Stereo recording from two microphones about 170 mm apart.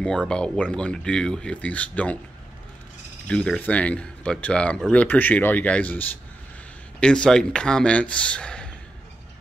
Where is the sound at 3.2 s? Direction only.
5° left (ahead or behind).